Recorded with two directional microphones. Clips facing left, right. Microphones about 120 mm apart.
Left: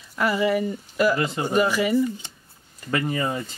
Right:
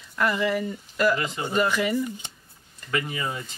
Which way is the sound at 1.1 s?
35° left (ahead or behind).